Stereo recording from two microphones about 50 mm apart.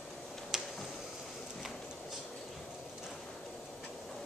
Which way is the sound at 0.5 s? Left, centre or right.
Centre.